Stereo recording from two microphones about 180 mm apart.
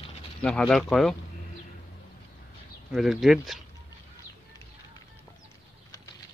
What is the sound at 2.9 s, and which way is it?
Speech, centre (ahead or behind).